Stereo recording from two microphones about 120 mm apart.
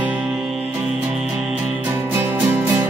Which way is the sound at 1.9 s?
20° right (ahead or behind).